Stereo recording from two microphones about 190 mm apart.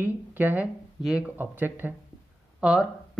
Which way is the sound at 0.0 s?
10° right (ahead or behind).